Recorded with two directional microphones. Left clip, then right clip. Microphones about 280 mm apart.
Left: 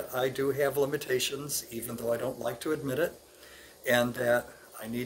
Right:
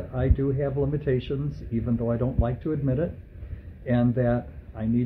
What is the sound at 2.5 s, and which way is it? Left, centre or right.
Speech, centre.